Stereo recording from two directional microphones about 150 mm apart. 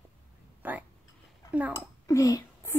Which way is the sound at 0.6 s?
10° right (ahead or behind).